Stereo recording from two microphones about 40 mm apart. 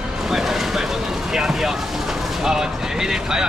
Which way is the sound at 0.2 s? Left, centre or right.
Centre.